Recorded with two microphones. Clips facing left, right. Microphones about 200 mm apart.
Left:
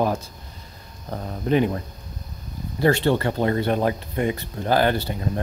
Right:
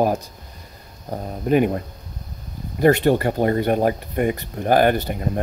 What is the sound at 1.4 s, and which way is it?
Speech, 45° right (ahead or behind).